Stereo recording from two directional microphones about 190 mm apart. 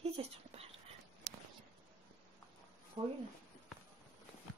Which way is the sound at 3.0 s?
30° right (ahead or behind).